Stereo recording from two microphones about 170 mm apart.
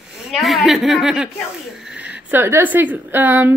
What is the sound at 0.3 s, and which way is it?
A woman's voice, centre (ahead or behind).